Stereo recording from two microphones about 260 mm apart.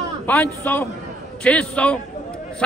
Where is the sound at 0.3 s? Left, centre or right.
Centre.